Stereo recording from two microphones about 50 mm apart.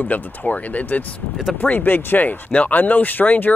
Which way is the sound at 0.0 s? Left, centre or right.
Left.